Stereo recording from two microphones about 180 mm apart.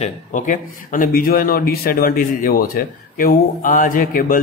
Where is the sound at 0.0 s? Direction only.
45° left (ahead or behind).